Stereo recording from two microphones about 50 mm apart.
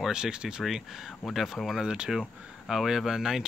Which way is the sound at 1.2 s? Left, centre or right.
Centre.